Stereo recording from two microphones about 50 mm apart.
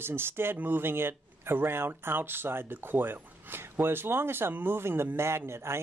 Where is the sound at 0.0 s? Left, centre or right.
Right.